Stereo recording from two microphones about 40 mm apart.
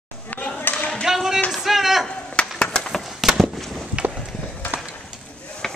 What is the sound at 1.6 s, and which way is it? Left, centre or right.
Speech, centre.